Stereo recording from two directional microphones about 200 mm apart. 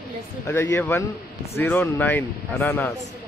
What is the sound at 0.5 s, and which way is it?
Speech, 15° left (ahead or behind).